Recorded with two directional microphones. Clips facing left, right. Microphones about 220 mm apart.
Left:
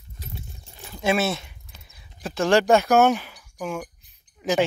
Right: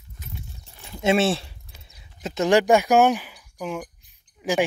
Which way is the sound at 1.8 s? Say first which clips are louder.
Right 1 dB; 20° right (ahead or behind).